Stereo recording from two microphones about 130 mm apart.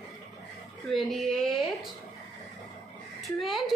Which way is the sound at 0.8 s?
Centre (ahead or behind).